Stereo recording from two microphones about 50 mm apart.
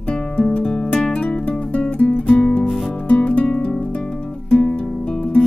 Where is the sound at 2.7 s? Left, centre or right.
Centre.